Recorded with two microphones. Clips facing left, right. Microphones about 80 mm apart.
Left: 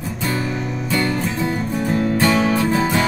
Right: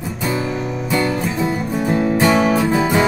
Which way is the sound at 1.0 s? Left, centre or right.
Centre.